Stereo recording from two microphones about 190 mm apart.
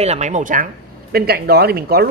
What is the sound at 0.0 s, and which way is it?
Speech, 35° right (ahead or behind).